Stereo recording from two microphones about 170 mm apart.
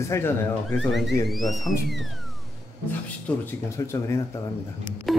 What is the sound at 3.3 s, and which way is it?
Speech, 10° left (ahead or behind).